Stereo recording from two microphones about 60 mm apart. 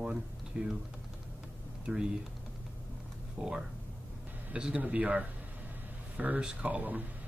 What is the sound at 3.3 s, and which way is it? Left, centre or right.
Speech, centre.